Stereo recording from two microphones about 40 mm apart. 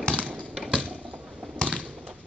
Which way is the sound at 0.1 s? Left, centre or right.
Right.